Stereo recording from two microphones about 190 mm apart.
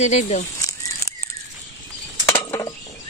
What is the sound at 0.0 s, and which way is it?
Speech, 35° left (ahead or behind).